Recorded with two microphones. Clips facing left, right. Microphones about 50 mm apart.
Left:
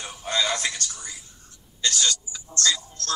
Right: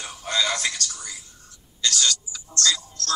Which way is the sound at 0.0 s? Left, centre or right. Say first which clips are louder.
Right 1 dB; left.